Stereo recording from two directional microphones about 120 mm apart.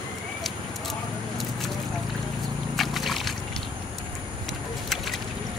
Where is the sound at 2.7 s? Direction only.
Centre (ahead or behind).